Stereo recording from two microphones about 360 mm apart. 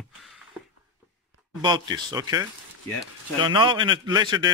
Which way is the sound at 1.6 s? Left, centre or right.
Centre.